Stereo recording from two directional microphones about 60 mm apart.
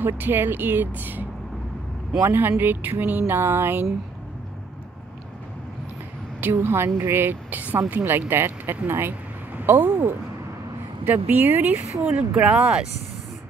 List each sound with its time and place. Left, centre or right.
0.0 s speech: right
2.2 s speech: right
6.4 s speech: right
12.0 s speech: centre